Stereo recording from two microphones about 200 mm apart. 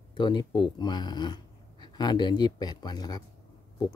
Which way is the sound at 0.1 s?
20° left (ahead or behind).